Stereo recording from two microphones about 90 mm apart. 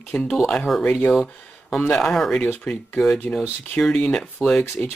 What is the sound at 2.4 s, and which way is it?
Speech, 15° left (ahead or behind).